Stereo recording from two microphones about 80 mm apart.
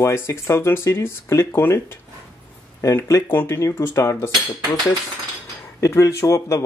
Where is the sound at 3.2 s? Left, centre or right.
Left.